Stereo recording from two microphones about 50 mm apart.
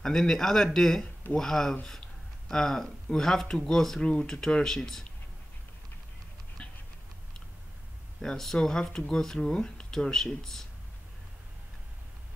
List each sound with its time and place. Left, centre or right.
0.0 s speech: centre
6.6 s a sound: left
8.2 s speech: centre